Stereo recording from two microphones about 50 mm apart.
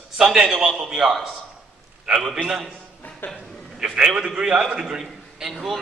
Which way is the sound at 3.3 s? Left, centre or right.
Centre.